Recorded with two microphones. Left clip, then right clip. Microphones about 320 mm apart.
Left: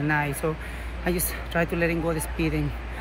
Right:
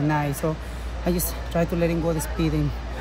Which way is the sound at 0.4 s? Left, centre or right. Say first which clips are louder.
Right 1 dB; centre.